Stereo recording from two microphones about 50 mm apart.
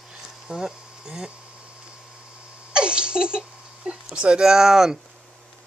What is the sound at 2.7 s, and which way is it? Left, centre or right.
Laughter, centre.